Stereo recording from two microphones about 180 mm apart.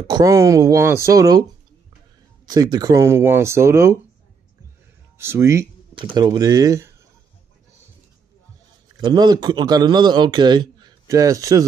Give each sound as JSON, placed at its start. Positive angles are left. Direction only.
{"t": 0.1, "sound": "speech", "side_deg": -15}
{"t": 2.4, "sound": "speech", "side_deg": -20}
{"t": 5.1, "sound": "a man's voice", "side_deg": -15}
{"t": 9.0, "sound": "a man's voice", "side_deg": -25}